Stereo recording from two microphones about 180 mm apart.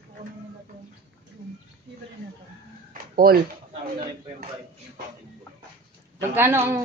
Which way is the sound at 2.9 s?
55° right (ahead or behind).